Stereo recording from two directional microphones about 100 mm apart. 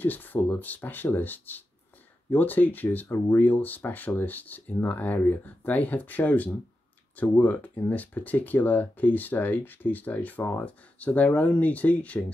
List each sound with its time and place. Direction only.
0.0 s speech: 20° left (ahead or behind)